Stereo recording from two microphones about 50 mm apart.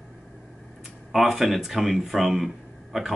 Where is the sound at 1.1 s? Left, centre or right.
Centre.